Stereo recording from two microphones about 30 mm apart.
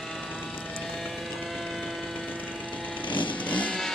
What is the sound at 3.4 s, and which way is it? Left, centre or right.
Music, left.